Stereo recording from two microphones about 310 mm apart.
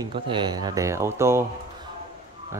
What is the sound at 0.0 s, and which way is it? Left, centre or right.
A man's voice, centre.